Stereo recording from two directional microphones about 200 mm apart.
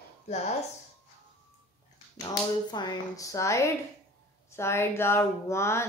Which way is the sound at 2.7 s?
20° left (ahead or behind).